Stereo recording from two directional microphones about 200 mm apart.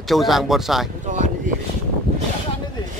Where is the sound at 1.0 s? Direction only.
35° right (ahead or behind).